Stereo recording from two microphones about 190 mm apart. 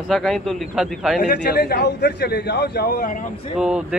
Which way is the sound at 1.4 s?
55° left (ahead or behind).